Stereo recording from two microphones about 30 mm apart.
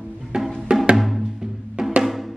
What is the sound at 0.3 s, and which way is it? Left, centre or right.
Music, right.